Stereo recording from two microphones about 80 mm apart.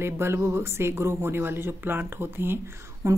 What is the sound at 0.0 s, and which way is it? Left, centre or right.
A woman's voice, right.